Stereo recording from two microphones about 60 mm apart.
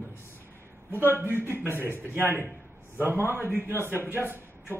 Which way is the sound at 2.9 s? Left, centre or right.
Right.